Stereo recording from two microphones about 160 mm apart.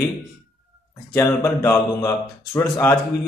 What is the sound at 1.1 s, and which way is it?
Speech, 15° left (ahead or behind).